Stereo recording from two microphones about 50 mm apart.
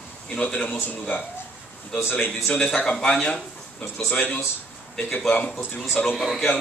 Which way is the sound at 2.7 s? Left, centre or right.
Centre.